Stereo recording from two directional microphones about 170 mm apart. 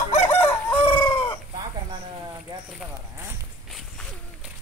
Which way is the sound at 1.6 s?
25° right (ahead or behind).